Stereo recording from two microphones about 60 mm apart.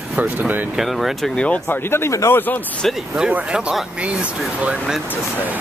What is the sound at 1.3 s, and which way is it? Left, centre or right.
Speech, left.